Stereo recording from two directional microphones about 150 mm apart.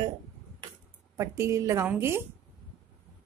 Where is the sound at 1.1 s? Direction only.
20° right (ahead or behind).